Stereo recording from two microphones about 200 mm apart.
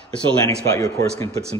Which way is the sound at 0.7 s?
15° left (ahead or behind).